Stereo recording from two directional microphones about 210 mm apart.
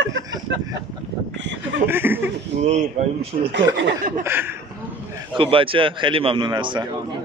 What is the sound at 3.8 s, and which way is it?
Speech, 55° right (ahead or behind).